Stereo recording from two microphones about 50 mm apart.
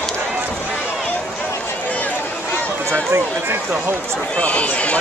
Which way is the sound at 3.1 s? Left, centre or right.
Right.